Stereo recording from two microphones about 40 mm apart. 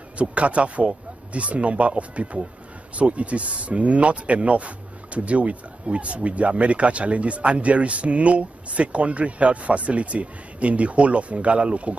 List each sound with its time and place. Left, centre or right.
0.2 s speech: right